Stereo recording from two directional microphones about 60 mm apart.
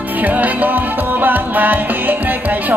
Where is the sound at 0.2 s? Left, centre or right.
Right.